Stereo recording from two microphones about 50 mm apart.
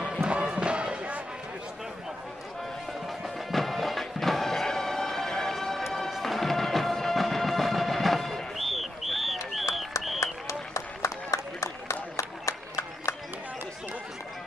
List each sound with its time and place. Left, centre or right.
0.0 s music: centre
2.9 s music: centre
9.5 s a sound: centre
10.2 s applause: left